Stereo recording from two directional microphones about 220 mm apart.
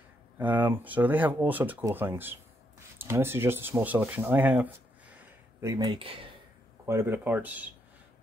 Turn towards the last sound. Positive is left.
turn(degrees=-5)  # may be behind; listen again after turning